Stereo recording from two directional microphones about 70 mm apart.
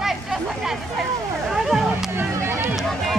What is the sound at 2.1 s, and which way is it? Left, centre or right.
Run, right.